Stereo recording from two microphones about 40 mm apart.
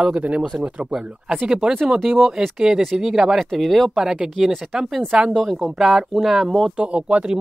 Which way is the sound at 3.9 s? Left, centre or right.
Centre.